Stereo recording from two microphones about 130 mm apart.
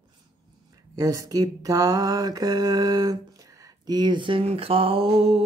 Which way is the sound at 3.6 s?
35° right (ahead or behind).